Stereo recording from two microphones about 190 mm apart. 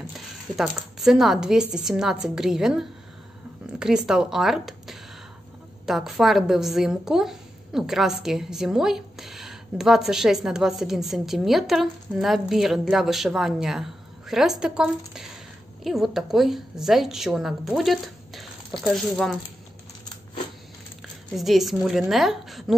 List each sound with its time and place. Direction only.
0.6 s a woman's voice: centre (ahead or behind)
21.4 s a woman's voice: centre (ahead or behind)